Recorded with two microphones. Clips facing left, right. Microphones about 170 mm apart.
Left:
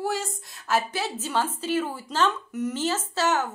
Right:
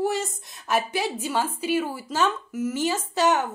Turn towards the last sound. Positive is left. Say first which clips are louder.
# right 3 dB
turn(degrees=-15)  # may be behind; listen again after turning